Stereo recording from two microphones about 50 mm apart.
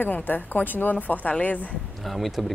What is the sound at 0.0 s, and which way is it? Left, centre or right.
A woman's voice, left.